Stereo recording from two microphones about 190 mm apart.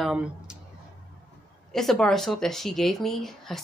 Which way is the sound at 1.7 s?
Centre (ahead or behind).